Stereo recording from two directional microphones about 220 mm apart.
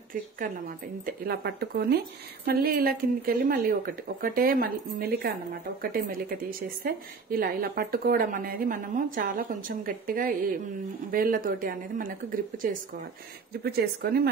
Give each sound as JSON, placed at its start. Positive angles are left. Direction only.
{"t": 0.1, "sound": "a woman's voice", "side_deg": -40}